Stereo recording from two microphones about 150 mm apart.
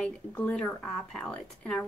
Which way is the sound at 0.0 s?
5° left (ahead or behind).